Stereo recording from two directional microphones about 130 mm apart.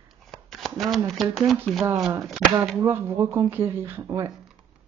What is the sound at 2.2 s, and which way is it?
Speech, centre (ahead or behind).